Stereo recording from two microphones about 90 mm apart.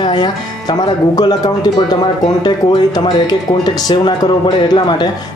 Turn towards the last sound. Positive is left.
turn(degrees=55)  # may be behind; listen again after turning